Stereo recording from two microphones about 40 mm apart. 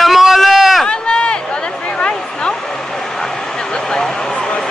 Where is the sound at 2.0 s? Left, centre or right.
Left.